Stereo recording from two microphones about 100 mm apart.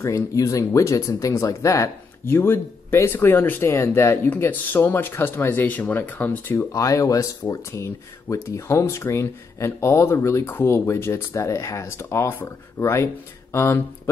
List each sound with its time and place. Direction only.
0.0 s speech: 30° left (ahead or behind)
6.5 s speech: 35° left (ahead or behind)